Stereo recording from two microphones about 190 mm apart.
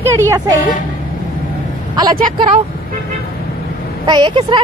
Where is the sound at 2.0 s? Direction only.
25° right (ahead or behind).